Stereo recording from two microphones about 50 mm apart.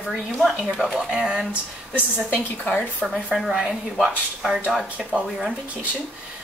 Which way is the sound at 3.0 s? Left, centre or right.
Centre.